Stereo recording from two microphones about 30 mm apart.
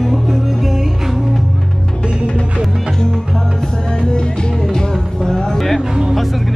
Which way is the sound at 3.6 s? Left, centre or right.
Left.